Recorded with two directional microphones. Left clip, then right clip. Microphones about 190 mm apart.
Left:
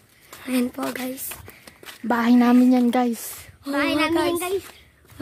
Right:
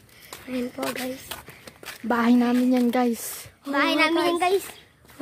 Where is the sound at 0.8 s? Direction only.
45° left (ahead or behind).